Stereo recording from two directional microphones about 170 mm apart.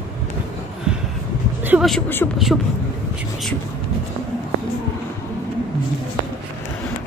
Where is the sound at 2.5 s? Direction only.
Centre (ahead or behind).